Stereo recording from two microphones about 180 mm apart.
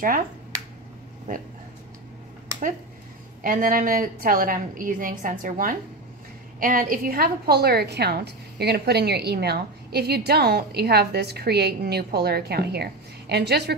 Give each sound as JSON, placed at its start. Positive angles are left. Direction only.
{"t": 1.3, "sound": "a woman's voice", "side_deg": -50}
{"t": 3.4, "sound": "a woman's voice", "side_deg": -50}